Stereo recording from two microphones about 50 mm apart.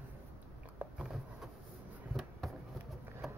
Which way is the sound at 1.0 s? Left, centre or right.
Centre.